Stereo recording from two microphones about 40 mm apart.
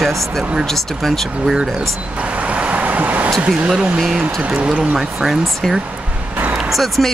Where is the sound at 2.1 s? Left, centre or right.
Right.